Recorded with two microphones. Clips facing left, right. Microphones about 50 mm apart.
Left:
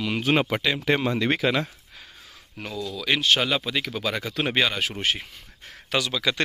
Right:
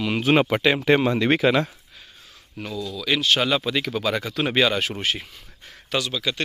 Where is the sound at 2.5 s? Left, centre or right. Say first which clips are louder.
Right 1 dB; left.